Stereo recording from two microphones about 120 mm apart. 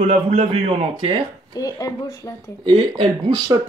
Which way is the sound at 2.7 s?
40° right (ahead or behind).